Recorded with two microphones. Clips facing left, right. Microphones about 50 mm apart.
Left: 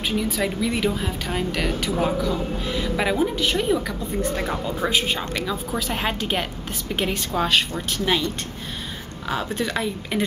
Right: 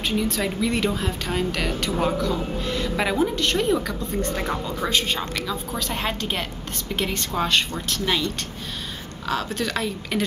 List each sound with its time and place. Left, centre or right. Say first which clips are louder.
0.0 s speech: even; centre
9.3 s speech: even; centre